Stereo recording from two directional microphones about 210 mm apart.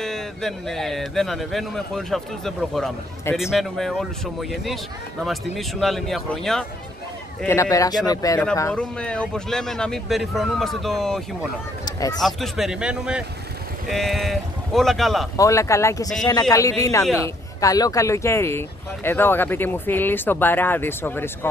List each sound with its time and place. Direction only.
0.0 s speech: centre (ahead or behind)
7.4 s speech: 15° left (ahead or behind)
11.8 s a sound: 20° left (ahead or behind)
12.4 s speech: centre (ahead or behind)
15.3 s speech: 15° left (ahead or behind)